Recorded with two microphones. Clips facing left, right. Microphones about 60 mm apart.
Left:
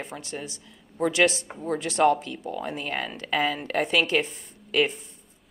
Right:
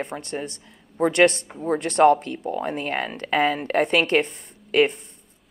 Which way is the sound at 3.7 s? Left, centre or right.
Right.